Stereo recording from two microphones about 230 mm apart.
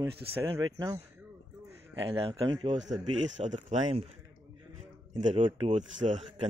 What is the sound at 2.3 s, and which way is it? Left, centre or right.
Speech, right.